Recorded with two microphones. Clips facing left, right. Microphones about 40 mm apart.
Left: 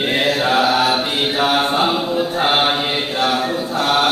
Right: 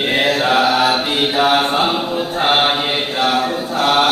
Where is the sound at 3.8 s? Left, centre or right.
Right.